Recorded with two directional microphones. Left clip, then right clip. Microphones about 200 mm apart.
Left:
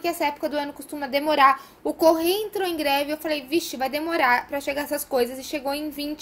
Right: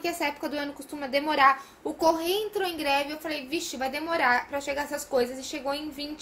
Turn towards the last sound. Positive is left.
turn(degrees=45)  # may be behind; listen again after turning